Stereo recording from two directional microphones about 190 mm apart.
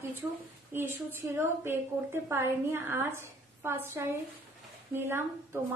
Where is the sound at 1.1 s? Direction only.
10° right (ahead or behind).